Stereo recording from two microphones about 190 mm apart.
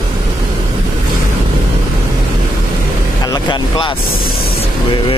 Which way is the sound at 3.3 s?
25° left (ahead or behind).